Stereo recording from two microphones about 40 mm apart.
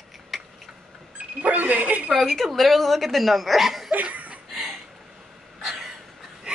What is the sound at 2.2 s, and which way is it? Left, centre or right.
Speech, centre.